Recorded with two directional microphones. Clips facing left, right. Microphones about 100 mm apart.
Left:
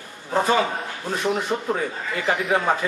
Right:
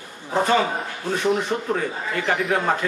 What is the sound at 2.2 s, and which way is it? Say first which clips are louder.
Speech: left 1 dB; 5° left (ahead or behind).